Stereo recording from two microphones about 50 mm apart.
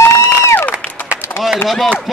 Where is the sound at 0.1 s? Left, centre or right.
Left.